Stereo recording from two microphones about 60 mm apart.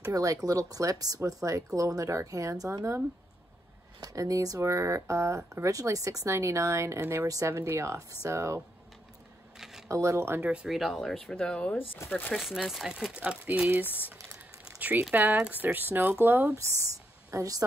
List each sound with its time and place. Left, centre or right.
0.1 s speech: right
4.0 s speech: right
4.6 s speech: right
9.6 s a sound: centre
9.8 s speech: right
10.4 s speech: centre
10.7 s speech: centre
11.2 s speech: centre
12.0 s speech: left
12.4 s speech: centre; by 13.7 s right
13.7 s speech: right
17.3 s speech: right